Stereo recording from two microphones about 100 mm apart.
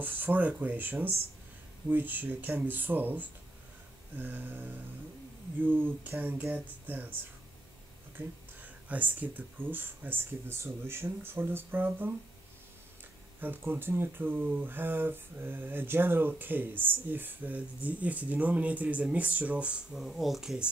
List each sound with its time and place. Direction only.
0.0 s speech: 20° right (ahead or behind)
8.8 s speech: 15° right (ahead or behind)
13.4 s speech: 20° right (ahead or behind); by 20.6 s 5° right (ahead or behind)